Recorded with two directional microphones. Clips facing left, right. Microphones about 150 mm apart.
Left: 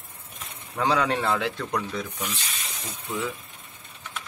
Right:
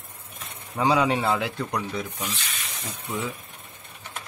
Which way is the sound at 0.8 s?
10° right (ahead or behind).